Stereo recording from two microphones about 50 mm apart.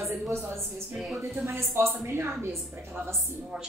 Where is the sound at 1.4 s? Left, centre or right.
Right.